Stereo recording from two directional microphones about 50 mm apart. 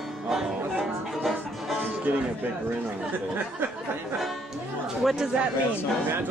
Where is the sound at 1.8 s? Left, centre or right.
Right.